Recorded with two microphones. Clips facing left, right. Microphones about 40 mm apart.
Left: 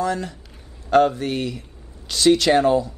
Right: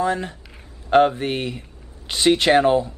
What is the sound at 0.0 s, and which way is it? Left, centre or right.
Speech, right.